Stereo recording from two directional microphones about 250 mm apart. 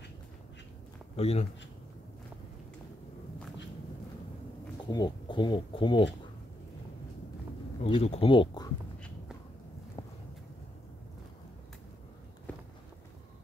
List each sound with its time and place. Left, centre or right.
1.1 s speech: left
4.8 s speech: centre
7.8 s speech: left